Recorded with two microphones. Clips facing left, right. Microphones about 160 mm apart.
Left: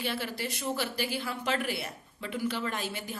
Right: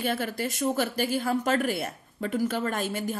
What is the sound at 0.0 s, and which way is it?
Speech, 45° right (ahead or behind).